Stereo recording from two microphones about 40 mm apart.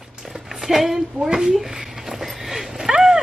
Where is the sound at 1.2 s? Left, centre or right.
Centre.